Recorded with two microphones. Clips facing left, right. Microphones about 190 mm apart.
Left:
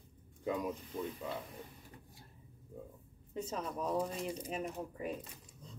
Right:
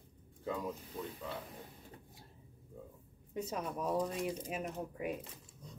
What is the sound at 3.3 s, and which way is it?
Speech, 10° right (ahead or behind).